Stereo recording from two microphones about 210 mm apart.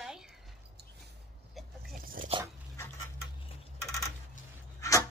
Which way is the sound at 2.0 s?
40° right (ahead or behind).